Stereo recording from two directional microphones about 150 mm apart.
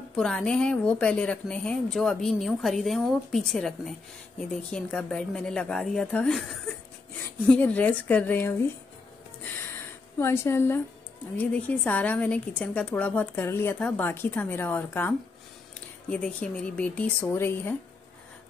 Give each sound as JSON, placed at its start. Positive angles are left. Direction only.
{"t": 0.1, "sound": "a woman's voice", "side_deg": 5}
{"t": 10.1, "sound": "a woman's voice", "side_deg": 15}